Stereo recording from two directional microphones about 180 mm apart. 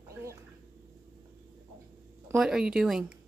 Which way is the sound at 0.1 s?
15° right (ahead or behind).